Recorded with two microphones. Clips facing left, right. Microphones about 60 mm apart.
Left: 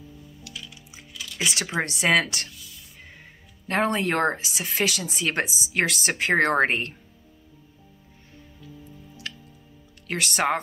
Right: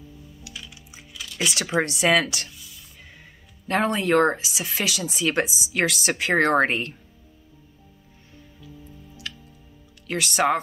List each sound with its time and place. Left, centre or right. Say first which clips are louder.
0.4 s music: even; centre
1.4 s speech: right 3 dB; left
3.6 s speech: right 1 dB; left
9.3 s music: even; left
10.0 s speech: right 3 dB; left